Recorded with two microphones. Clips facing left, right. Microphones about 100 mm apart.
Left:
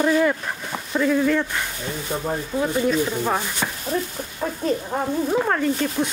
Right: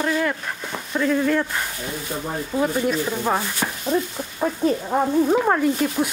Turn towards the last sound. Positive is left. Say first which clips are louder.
# right 2 dB
turn(degrees=-5)  # may be behind; listen again after turning